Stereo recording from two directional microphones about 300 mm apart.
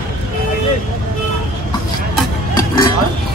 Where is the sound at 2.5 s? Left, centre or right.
Centre.